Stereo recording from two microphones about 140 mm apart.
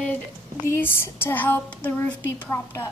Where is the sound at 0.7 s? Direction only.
15° left (ahead or behind).